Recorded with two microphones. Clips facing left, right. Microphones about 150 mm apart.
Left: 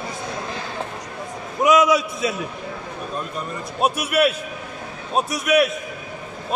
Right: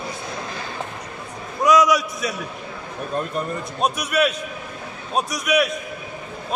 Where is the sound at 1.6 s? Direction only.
25° left (ahead or behind).